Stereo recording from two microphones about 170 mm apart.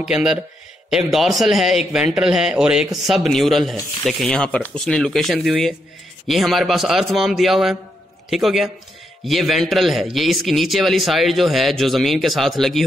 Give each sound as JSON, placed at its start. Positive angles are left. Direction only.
{"t": 0.0, "sound": "a man's voice", "side_deg": -5}